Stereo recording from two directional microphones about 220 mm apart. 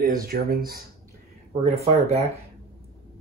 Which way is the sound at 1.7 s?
30° right (ahead or behind).